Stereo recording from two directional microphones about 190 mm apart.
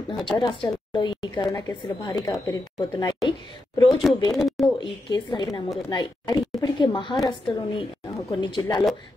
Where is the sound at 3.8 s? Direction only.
Centre (ahead or behind).